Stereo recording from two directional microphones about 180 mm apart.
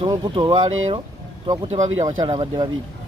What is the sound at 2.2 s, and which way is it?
Speech, 25° right (ahead or behind).